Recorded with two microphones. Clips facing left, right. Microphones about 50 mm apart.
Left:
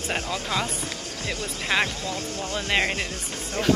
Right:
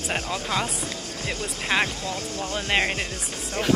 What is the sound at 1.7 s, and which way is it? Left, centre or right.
Speech, centre.